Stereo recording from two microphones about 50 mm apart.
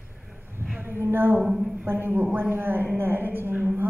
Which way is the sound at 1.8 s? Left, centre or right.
Right.